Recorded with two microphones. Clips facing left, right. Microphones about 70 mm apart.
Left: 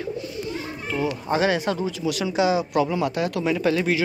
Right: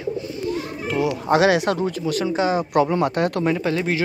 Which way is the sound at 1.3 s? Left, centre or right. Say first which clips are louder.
Right 5 dB; right.